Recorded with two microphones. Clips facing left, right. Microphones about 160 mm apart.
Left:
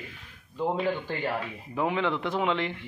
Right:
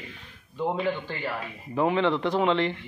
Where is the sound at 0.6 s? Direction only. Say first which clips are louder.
Even; 5° left (ahead or behind).